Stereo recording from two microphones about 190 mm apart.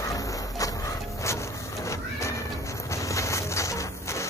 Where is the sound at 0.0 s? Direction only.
15° left (ahead or behind).